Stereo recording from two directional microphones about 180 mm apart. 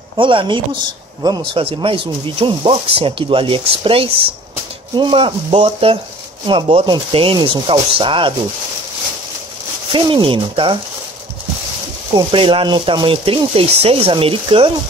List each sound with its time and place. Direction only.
0.2 s speech: 30° right (ahead or behind)
9.9 s speech: 25° right (ahead or behind)
12.2 s speech: 30° right (ahead or behind)